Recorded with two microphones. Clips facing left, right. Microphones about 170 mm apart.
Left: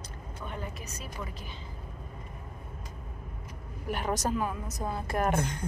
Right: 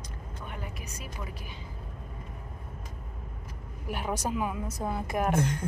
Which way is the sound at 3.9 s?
5° right (ahead or behind).